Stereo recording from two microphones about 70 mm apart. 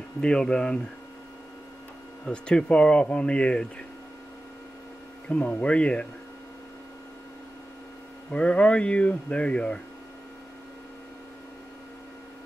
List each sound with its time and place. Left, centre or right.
0.2 s speech: centre
2.2 s speech: centre
5.3 s speech: centre
8.3 s speech: centre